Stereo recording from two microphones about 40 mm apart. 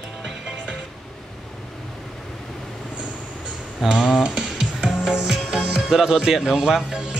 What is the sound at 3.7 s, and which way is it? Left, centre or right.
Music, centre.